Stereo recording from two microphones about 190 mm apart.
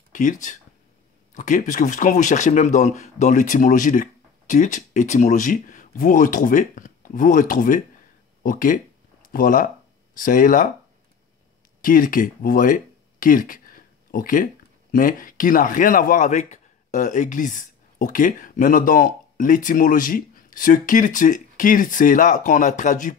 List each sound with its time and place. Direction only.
0.1 s speech: 40° left (ahead or behind)
11.8 s speech: 45° left (ahead or behind)